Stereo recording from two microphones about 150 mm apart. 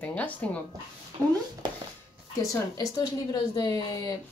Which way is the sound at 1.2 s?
20° right (ahead or behind).